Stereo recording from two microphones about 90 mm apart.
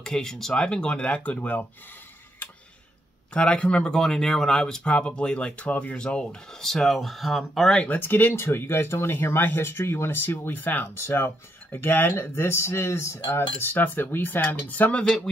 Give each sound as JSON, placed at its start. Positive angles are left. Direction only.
{"t": 0.0, "sound": "speech", "side_deg": 5}
{"t": 3.3, "sound": "speech", "side_deg": 10}
{"t": 7.8, "sound": "speech", "side_deg": 20}